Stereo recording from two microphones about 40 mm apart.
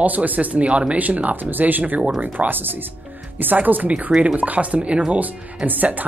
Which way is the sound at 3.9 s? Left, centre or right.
Right.